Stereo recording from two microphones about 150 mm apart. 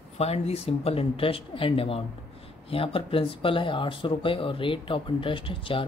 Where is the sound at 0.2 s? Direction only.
45° left (ahead or behind).